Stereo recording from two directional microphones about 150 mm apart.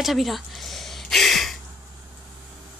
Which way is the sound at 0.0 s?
Centre (ahead or behind).